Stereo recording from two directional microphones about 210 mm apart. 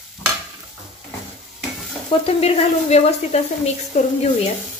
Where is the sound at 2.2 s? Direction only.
30° left (ahead or behind).